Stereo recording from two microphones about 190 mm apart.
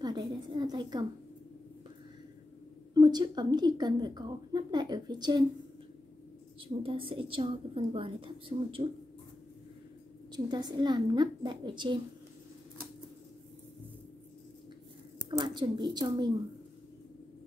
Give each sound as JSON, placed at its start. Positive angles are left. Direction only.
{"t": 0.0, "sound": "a woman's voice", "side_deg": -25}
{"t": 2.9, "sound": "a woman's voice", "side_deg": -20}
{"t": 6.7, "sound": "a woman's voice", "side_deg": -25}
{"t": 10.3, "sound": "a woman's voice", "side_deg": -20}
{"t": 15.2, "sound": "a woman's voice", "side_deg": -25}